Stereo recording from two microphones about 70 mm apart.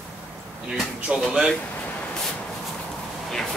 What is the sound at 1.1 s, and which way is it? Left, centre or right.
Speech, centre.